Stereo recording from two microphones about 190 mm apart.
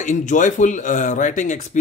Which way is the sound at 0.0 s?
40° left (ahead or behind).